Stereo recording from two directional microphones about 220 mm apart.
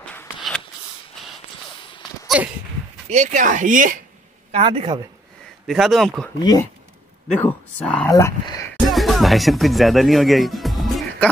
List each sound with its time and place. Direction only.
2.2 s a sound: 5° right (ahead or behind)
3.1 s speech: 35° right (ahead or behind)
4.5 s speech: 25° right (ahead or behind)
5.7 s speech: centre (ahead or behind)
6.4 s speech: 15° left (ahead or behind)
8.1 s speech: 15° left (ahead or behind)
8.9 s music: centre (ahead or behind)